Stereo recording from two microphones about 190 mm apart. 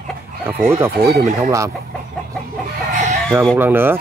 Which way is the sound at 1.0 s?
55° right (ahead or behind).